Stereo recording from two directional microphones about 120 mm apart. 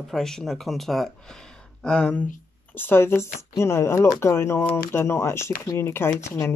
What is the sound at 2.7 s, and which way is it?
Speech, 20° left (ahead or behind).